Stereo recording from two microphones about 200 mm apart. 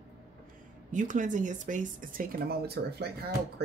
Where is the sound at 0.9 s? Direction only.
40° right (ahead or behind).